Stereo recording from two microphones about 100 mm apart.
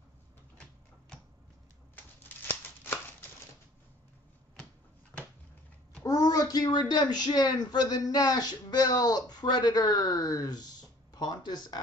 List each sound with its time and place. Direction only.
2.0 s shuffling cards: 20° left (ahead or behind)
6.0 s a woman's voice: 35° left (ahead or behind)